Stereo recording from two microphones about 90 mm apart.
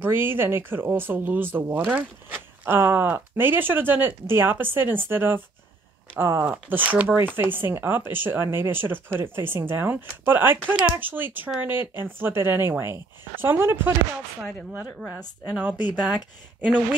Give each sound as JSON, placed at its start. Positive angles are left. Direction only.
{"t": 0.0, "sound": "speech", "side_deg": -25}
{"t": 15.7, "sound": "speech", "side_deg": 50}